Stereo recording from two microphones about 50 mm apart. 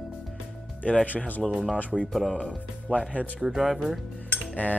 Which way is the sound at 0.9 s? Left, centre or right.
Left.